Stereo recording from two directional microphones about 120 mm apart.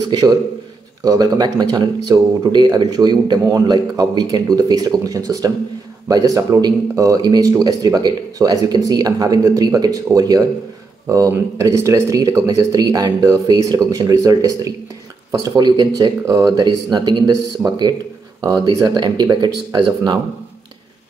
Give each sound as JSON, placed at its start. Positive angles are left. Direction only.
{"t": 0.1, "sound": "speech", "side_deg": -35}